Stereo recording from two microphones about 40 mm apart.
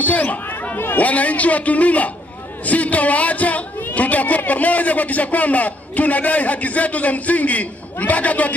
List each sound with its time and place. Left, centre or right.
0.0 s chatter: left
0.9 s a man's voice: left